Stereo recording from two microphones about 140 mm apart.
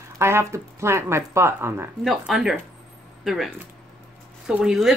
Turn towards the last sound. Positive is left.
turn(degrees=-5)  # may be behind; listen again after turning